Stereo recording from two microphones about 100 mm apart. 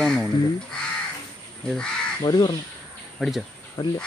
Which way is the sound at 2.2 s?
45° left (ahead or behind).